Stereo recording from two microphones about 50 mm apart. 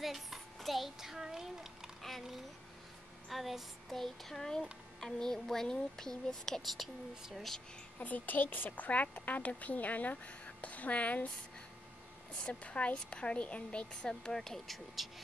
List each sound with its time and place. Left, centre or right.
0.0 s a child's voice: centre
2.0 s child singing: centre
5.0 s speech: centre
6.8 s child singing: centre
8.0 s a woman's voice: left
12.4 s a woman's voice: left; by 14.8 s centre
15.0 s child singing: centre